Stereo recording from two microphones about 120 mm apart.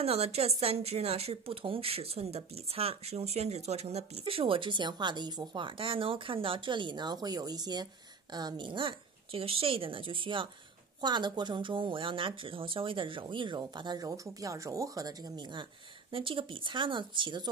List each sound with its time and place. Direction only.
0.0 s a woman's voice: 60° right (ahead or behind); by 15.6 s 35° right (ahead or behind)
16.1 s a woman's voice: 45° right (ahead or behind)